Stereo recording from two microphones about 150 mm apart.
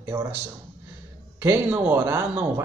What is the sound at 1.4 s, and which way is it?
A man's voice, 10° right (ahead or behind).